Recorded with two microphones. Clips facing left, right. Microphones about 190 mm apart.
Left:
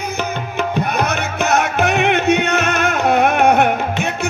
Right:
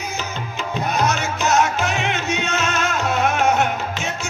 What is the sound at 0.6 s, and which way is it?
Music, 60° left (ahead or behind).